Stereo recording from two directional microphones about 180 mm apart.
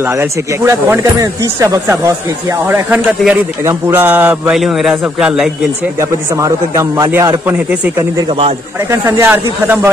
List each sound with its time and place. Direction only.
0.2 s speech: 15° right (ahead or behind)
5.9 s speech: 20° right (ahead or behind)
8.9 s speech: 15° right (ahead or behind)